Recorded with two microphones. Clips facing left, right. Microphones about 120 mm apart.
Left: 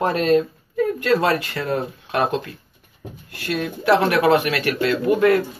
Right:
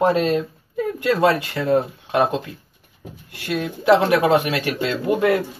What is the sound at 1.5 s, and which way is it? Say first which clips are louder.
Speech: right 5 dB; 15° right (ahead or behind).